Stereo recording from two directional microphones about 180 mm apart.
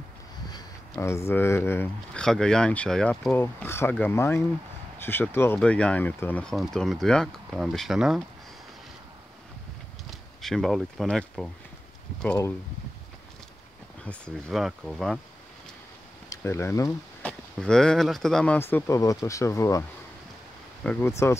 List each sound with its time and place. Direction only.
0.5 s speech: 20° left (ahead or behind); by 8.2 s centre (ahead or behind)
10.4 s speech: centre (ahead or behind)
14.0 s speech: 5° left (ahead or behind)
16.3 s speech: 15° left (ahead or behind)
20.8 s speech: 10° left (ahead or behind)